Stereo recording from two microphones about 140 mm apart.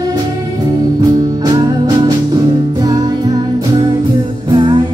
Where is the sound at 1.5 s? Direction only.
30° right (ahead or behind).